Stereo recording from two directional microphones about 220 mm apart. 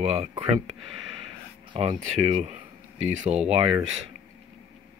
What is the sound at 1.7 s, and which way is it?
Speech, 25° right (ahead or behind).